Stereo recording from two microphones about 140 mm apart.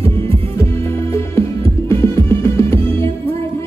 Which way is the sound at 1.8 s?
20° left (ahead or behind).